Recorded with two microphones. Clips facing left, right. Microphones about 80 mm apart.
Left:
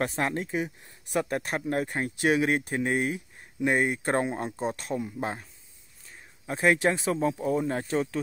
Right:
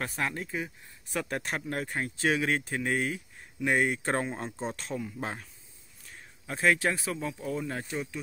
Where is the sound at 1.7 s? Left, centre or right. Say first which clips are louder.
Left 7 dB; left.